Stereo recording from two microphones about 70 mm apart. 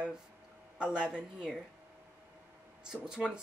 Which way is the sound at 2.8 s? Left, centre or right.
Centre.